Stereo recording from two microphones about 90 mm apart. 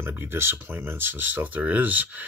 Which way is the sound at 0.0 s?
25° right (ahead or behind).